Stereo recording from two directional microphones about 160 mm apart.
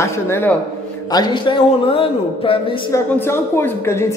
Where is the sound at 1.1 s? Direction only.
30° left (ahead or behind).